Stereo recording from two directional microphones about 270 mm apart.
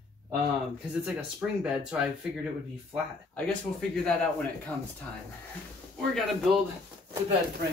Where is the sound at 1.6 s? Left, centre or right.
Centre.